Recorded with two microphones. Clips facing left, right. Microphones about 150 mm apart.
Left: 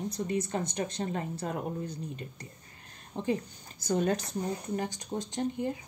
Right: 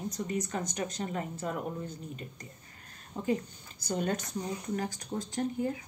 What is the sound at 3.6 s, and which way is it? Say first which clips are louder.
Speech: left 4 dB; 40° left (ahead or behind).